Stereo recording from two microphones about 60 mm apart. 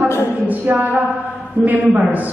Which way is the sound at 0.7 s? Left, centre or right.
Right.